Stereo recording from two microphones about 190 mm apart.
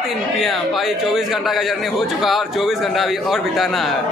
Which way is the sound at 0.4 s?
Centre (ahead or behind).